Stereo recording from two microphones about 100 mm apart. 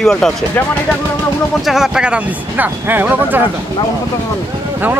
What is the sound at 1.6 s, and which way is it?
Speech, 5° right (ahead or behind).